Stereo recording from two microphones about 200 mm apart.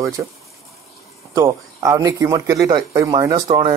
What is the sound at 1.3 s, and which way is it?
Speech, 15° right (ahead or behind).